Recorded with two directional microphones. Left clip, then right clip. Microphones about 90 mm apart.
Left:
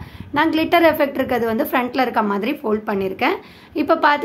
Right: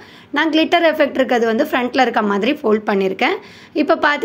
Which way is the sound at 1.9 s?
35° right (ahead or behind).